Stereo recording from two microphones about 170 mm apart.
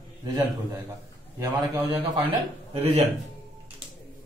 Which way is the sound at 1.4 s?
25° right (ahead or behind).